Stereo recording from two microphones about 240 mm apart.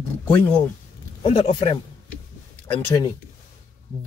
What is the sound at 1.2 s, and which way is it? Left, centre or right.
Speech, left.